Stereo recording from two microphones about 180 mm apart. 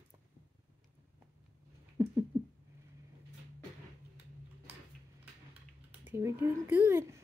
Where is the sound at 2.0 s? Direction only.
15° right (ahead or behind).